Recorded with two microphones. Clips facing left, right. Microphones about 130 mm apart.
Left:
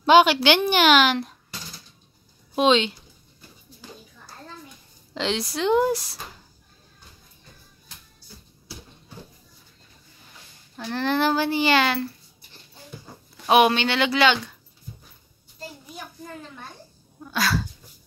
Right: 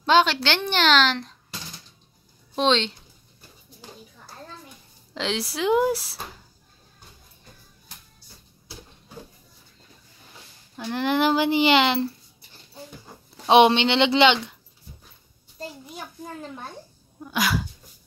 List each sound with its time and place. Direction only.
0.0 s a woman's voice: 10° left (ahead or behind)
2.5 s speech: 5° left (ahead or behind)
5.1 s speech: centre (ahead or behind)
10.9 s speech: 15° right (ahead or behind)
13.5 s a woman's voice: 25° right (ahead or behind)
17.2 s speech: 15° right (ahead or behind)